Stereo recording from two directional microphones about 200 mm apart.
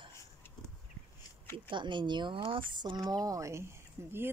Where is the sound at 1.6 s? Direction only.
25° right (ahead or behind).